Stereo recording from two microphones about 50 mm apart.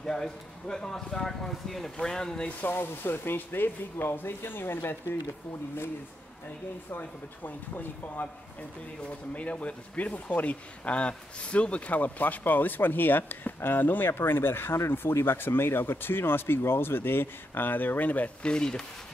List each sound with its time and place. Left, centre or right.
0.0 s speech: centre
2.7 s speech: left
6.9 s speech: left
9.3 s speech: left
18.4 s speech: centre